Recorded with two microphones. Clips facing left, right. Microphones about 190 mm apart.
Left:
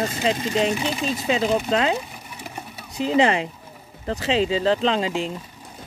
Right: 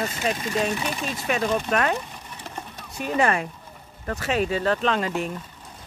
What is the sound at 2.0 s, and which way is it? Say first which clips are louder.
Sewing machine: left 2 dB; 10° left (ahead or behind).